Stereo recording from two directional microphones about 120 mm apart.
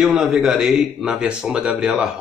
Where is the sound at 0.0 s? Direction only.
5° right (ahead or behind).